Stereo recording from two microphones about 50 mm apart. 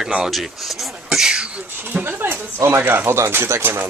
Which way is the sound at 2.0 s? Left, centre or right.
Right.